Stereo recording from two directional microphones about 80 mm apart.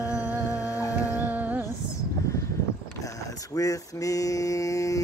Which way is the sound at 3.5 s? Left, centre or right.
Left.